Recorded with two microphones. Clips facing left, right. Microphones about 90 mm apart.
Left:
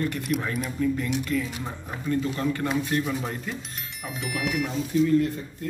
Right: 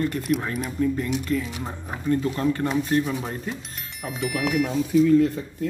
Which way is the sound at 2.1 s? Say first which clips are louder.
Right 3 dB; 35° right (ahead or behind).